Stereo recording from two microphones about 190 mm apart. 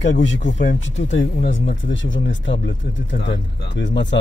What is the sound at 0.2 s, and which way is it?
Speech, 80° left.